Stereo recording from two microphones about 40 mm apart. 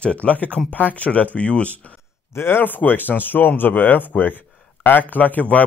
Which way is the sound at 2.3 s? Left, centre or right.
Left.